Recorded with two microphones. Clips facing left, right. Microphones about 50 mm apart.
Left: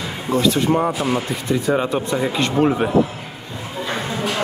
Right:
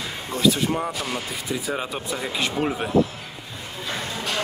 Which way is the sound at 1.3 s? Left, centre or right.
Centre.